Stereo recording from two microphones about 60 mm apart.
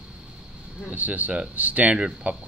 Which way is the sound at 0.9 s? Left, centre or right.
Right.